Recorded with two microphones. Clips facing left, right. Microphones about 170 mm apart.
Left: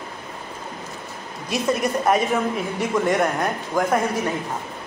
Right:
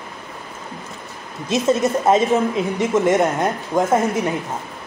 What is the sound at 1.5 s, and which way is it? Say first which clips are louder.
Speech: right 5 dB; 25° right (ahead or behind).